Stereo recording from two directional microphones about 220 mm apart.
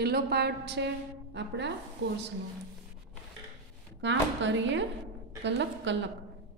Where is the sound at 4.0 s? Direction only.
55° right (ahead or behind).